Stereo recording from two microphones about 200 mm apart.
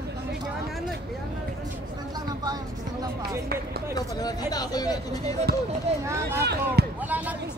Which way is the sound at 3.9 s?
20° left (ahead or behind).